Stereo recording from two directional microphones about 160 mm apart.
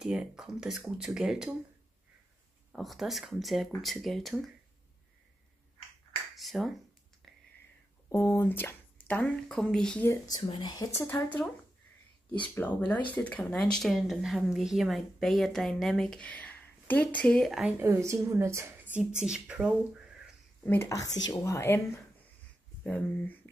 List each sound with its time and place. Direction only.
0.0 s speech: 5° right (ahead or behind)
2.7 s speech: centre (ahead or behind)
6.3 s finger snapping: centre (ahead or behind)
7.2 s a sound: centre (ahead or behind)
8.1 s speech: 15° left (ahead or behind)
10.0 s speech: 25° left (ahead or behind)
12.5 s speech: 10° left (ahead or behind)
17.7 s speech: 15° right (ahead or behind)
20.6 s speech: 15° left (ahead or behind)